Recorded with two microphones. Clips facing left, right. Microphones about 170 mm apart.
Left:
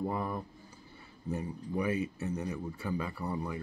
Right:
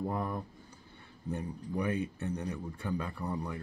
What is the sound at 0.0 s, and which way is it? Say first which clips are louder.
Speech: even; 5° left (ahead or behind).